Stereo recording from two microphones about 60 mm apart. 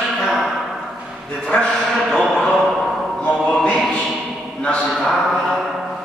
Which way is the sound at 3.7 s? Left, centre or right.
Centre.